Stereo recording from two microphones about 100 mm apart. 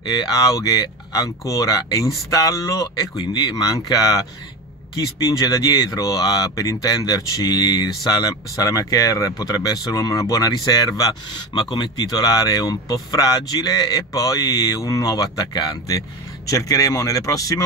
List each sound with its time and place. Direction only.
0.0 s speech: 45° left (ahead or behind)